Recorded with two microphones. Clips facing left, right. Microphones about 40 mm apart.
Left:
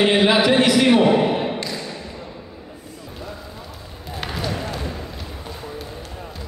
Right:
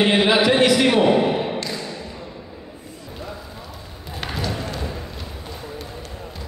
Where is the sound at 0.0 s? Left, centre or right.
Centre.